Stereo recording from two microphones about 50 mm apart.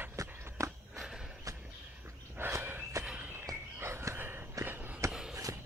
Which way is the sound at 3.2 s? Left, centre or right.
Right.